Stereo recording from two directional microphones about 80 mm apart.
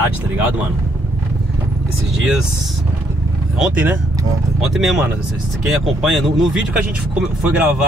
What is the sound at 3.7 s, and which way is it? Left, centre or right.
Speech, right.